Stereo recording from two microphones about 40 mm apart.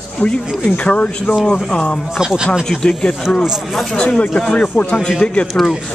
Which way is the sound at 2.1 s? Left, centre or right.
Centre.